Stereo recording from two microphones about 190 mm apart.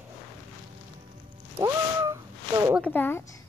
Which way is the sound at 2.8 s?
10° left (ahead or behind).